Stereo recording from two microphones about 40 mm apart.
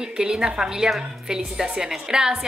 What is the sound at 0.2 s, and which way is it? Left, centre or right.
A woman's voice, centre.